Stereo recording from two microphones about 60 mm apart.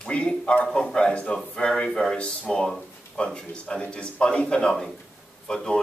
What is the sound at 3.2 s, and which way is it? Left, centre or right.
Speech, centre.